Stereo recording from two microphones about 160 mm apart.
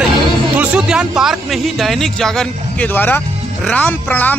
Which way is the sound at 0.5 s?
10° right (ahead or behind).